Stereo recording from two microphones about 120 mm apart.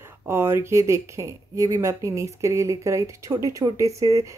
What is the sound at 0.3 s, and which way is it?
Speech, 20° right (ahead or behind).